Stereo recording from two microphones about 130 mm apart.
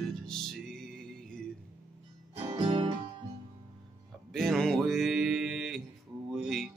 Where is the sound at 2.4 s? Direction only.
40° right (ahead or behind).